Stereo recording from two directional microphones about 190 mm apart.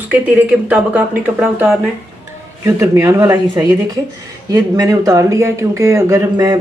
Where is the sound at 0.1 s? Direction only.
5° right (ahead or behind).